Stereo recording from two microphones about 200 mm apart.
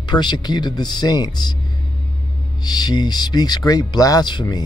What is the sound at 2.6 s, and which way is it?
Speech, 20° left (ahead or behind).